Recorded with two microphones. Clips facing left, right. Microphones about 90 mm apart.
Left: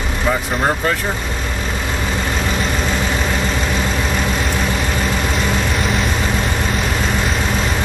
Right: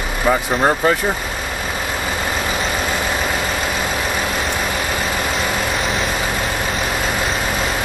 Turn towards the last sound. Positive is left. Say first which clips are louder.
# left 1 dB
turn(degrees=-5)  # may be behind; listen again after turning